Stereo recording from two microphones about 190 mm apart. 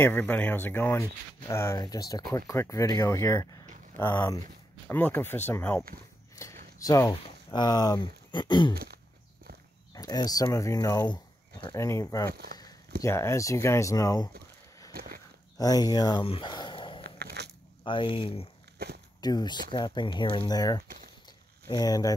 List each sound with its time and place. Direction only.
0.0 s speech: 10° left (ahead or behind)
8.7 s throat clearing: 55° right (ahead or behind)
9.9 s speech: 20° left (ahead or behind)
12.3 s speech: 55° right (ahead or behind)
13.0 s speech: 15° left (ahead or behind)
14.9 s horse: 55° right (ahead or behind)
15.5 s speech: 20° left (ahead or behind)
17.0 s biting: 60° right (ahead or behind)
17.8 s speech: 25° left (ahead or behind)
18.8 s speech: 55° right (ahead or behind)
19.2 s speech: 20° left (ahead or behind)